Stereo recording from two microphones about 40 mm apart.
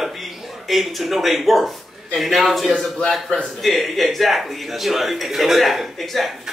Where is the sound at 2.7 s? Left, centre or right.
Left.